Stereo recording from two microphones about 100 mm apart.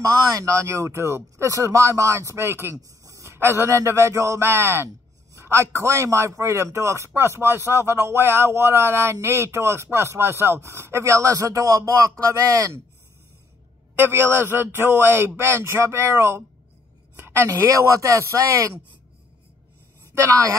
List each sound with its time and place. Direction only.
0.0 s speech: 35° right (ahead or behind)
13.9 s speech: 25° right (ahead or behind)
20.2 s speech: 30° right (ahead or behind)